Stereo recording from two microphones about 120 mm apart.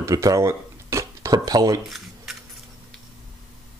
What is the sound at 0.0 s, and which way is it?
Dishes, 30° right (ahead or behind).